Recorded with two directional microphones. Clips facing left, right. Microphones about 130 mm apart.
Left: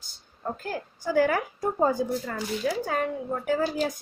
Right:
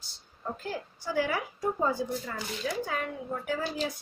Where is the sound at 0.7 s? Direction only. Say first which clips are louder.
Left 5 dB; 50° left (ahead or behind).